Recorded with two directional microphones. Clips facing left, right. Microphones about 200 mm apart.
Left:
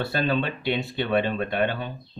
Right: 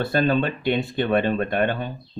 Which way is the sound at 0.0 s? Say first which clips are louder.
Right 4 dB; 50° right (ahead or behind).